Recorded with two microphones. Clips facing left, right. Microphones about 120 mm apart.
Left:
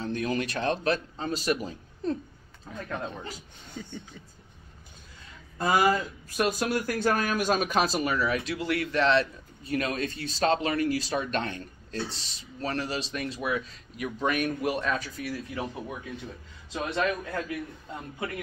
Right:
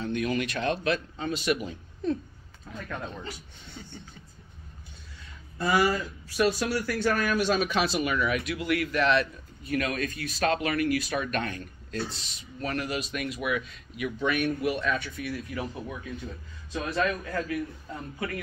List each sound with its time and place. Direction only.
0.0 s speech: 35° left (ahead or behind)
5.6 s a man's voice: 45° left (ahead or behind); by 17.6 s 20° left (ahead or behind)